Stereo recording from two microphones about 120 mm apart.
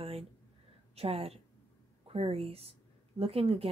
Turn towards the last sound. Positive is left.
turn(degrees=-55)  # may be behind; listen again after turning